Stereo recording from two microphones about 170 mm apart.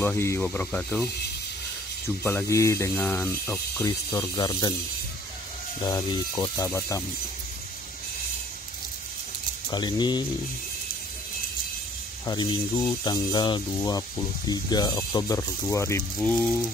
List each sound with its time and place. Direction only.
0.0 s speech: 15° left (ahead or behind)
2.2 s speech: 15° left (ahead or behind)
5.8 s speech: 20° left (ahead or behind)
9.7 s speech: 25° left (ahead or behind)
12.3 s speech: 25° left (ahead or behind); by 16.6 s 10° left (ahead or behind)